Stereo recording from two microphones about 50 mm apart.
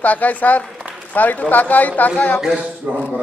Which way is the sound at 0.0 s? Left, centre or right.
Left.